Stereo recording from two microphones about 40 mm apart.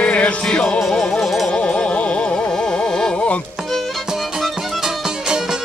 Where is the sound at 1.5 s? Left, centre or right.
Left.